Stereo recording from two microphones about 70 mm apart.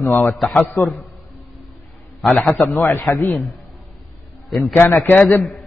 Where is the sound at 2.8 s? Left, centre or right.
Left.